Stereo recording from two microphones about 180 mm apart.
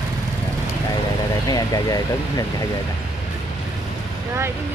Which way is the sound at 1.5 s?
20° left (ahead or behind).